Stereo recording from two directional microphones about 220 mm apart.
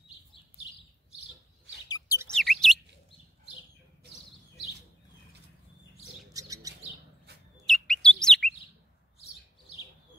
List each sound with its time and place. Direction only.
1.9 s chirp: 15° left (ahead or behind)
2.3 s bird: centre (ahead or behind)
6.3 s bird: 15° right (ahead or behind)
7.3 s a sound: 50° right (ahead or behind)
7.6 s chirp: centre (ahead or behind)